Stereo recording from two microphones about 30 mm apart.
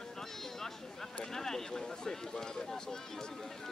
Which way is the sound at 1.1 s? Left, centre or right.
Centre.